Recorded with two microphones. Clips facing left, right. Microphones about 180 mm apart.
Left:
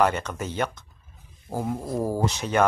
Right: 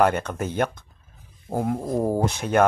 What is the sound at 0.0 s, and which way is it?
A man's voice, 55° right (ahead or behind).